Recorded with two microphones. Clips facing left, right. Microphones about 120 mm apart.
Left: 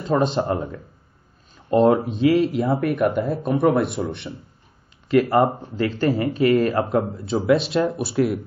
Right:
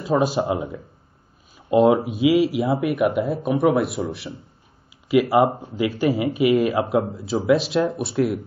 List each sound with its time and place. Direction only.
0.0 s speech: 5° right (ahead or behind)